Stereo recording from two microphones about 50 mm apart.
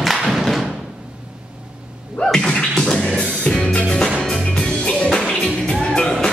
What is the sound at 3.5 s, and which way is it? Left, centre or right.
Music, left.